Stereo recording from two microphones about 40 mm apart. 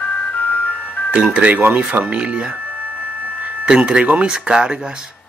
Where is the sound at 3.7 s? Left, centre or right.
Right.